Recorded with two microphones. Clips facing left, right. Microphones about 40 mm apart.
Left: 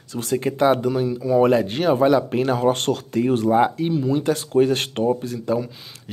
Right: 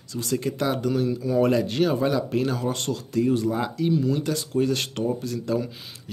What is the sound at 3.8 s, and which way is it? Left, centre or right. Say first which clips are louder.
Speech: left 2 dB; centre.